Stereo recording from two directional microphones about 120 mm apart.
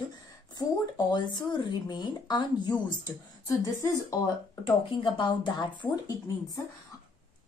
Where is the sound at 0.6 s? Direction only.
35° left (ahead or behind).